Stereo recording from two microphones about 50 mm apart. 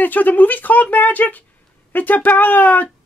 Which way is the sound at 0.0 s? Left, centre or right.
Left.